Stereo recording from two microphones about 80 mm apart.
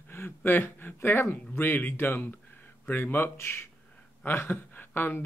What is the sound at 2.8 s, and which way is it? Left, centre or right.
Speech, left.